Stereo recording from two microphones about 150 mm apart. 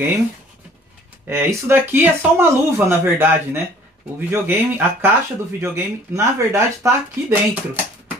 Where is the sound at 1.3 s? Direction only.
15° right (ahead or behind).